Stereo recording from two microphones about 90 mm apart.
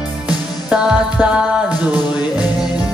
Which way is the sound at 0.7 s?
10° right (ahead or behind).